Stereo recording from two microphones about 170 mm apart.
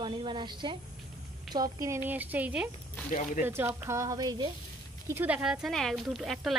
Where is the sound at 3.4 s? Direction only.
15° right (ahead or behind).